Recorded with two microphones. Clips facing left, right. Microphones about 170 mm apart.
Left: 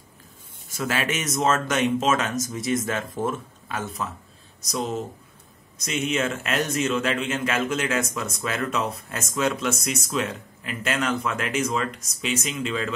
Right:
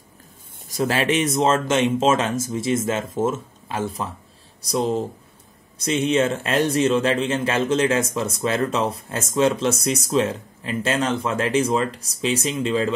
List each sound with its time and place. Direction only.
0.7 s speech: 35° right (ahead or behind)